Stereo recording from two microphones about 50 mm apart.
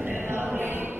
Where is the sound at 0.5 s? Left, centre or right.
Right.